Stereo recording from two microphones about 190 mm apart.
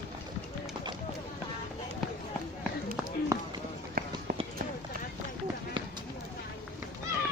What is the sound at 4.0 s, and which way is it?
Run, 50° right (ahead or behind).